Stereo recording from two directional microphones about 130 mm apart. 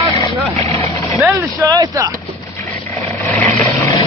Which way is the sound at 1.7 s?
25° right (ahead or behind).